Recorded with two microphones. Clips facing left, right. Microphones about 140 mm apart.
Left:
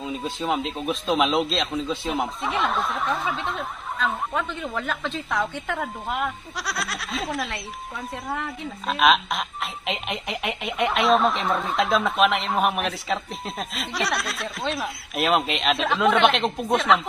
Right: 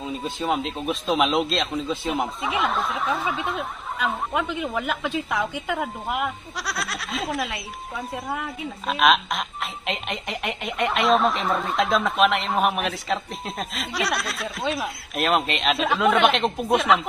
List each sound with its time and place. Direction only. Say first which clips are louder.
0.0 s speech: even; centre (ahead or behind)